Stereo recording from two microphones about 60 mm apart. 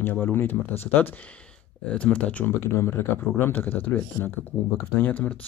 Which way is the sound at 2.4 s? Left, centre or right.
Left.